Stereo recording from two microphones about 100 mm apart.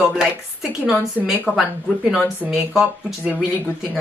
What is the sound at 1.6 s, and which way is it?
Speech, 5° right (ahead or behind).